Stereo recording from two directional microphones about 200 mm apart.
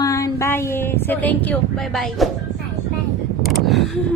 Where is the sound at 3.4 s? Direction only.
Centre (ahead or behind).